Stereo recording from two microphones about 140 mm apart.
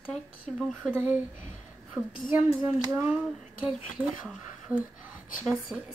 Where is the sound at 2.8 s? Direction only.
25° right (ahead or behind).